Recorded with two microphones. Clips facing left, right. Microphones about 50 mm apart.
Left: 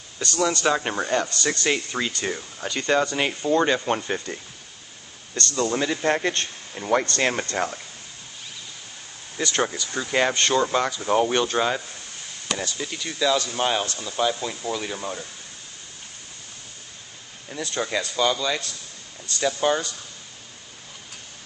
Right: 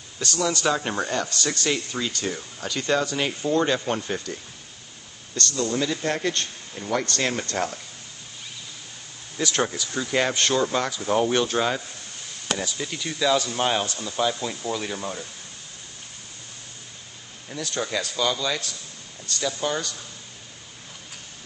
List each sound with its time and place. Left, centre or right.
0.2 s a man's voice: centre; by 2.3 s left
2.3 s a man's voice: centre
5.6 s a man's voice: left
9.4 s speech: centre
17.5 s a man's voice: centre
19.4 s a man's voice: centre